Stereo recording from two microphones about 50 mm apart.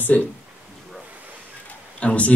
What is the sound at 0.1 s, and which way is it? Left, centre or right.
Speech, left.